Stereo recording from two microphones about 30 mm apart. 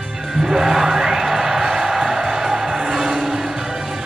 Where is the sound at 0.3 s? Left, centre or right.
Centre.